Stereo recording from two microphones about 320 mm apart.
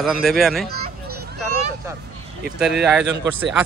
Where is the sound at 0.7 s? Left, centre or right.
Right.